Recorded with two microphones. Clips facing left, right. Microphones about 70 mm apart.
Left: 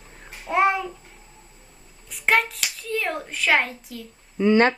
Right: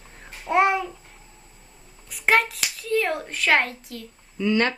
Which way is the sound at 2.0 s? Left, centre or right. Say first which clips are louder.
Right 1 dB; centre.